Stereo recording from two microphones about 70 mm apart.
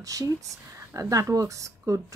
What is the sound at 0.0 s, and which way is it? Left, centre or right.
A woman's voice, right.